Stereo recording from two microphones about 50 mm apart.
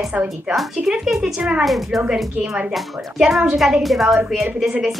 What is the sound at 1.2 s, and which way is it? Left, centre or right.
Speech, centre.